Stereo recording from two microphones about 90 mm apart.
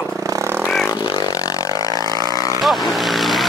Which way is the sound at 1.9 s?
50° right (ahead or behind).